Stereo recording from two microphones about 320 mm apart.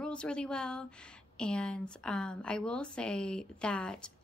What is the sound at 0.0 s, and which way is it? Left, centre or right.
Speech, centre.